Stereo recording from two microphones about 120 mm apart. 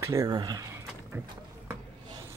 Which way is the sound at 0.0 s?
25° right (ahead or behind).